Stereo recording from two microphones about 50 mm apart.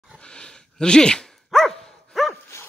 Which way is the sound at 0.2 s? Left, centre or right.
Centre.